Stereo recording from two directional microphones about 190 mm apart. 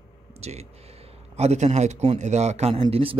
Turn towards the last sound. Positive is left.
turn(degrees=-30)  # may be behind; listen again after turning